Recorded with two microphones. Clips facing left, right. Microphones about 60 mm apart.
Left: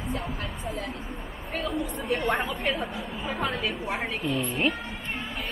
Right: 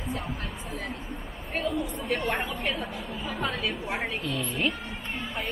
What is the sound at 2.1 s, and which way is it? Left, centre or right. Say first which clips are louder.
Speech: left 3 dB; left.